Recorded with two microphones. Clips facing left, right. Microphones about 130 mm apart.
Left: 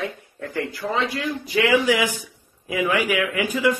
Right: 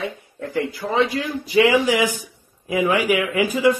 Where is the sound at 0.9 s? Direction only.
20° right (ahead or behind).